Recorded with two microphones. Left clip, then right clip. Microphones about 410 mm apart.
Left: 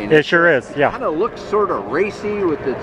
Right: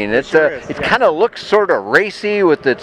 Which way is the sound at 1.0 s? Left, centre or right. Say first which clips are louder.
Right 7 dB; right.